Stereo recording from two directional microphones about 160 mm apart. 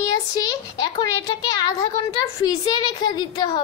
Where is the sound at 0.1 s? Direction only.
25° left (ahead or behind).